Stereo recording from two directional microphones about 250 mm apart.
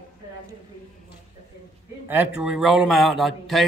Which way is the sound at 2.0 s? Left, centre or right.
Centre.